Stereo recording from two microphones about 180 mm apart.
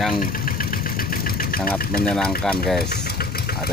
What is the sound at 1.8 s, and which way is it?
Speech, 55° left (ahead or behind).